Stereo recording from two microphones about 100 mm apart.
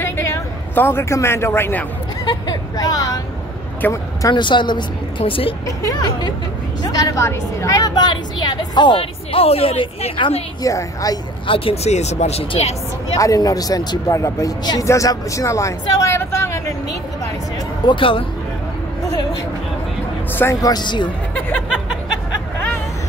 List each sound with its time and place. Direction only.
0.0 s a sound: 25° left (ahead or behind)
2.2 s a sound: 45° left (ahead or behind)
3.8 s speech: 20° left (ahead or behind)
4.3 s a woman's voice: 50° left (ahead or behind)
5.2 s a woman's voice: 70° left (ahead or behind)
5.7 s a woman's voice: 35° left (ahead or behind); by 10.3 s 55° left (ahead or behind)
10.6 s speech: 35° left (ahead or behind)
11.4 s speech: 65° left (ahead or behind); by 13.2 s 90° left
13.2 s speech: 35° left (ahead or behind)
14.6 s a woman's voice: 45° left (ahead or behind)
14.9 s speech: 30° left (ahead or behind)
17.8 s speech: 60° left (ahead or behind)
20.6 s a woman's voice: 45° left (ahead or behind)